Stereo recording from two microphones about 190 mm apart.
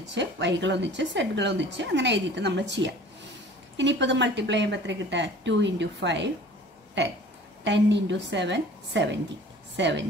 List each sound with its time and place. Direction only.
0.0 s a woman's voice: 70° right (ahead or behind)
7.6 s a woman's voice: 70° right (ahead or behind)